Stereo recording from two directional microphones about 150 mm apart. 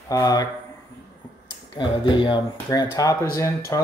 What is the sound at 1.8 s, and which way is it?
Speech, 35° left (ahead or behind).